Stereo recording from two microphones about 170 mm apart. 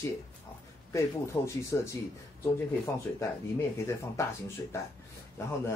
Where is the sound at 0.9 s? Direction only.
15° left (ahead or behind).